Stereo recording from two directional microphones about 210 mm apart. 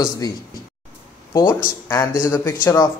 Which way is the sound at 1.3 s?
15° left (ahead or behind).